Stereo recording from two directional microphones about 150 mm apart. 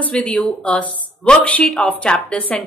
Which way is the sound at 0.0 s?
5° left (ahead or behind).